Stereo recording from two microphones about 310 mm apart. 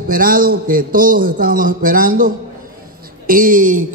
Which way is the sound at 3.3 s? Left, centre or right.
Right.